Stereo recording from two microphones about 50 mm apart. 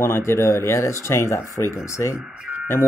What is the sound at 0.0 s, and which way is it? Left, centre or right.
Speech, left.